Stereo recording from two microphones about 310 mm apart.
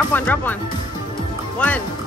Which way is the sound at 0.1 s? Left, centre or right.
Centre.